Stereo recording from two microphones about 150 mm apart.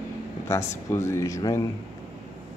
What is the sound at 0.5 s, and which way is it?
Speech, 20° left (ahead or behind).